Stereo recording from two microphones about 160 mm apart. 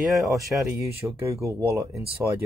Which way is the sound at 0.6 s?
15° right (ahead or behind).